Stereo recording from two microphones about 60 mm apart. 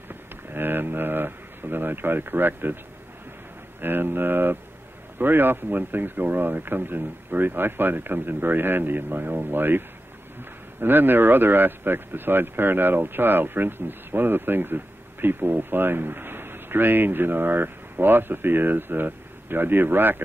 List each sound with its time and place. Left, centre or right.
0.1 s speech: right
3.8 s speech: right